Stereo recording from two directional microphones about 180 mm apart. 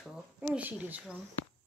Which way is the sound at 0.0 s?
5° right (ahead or behind).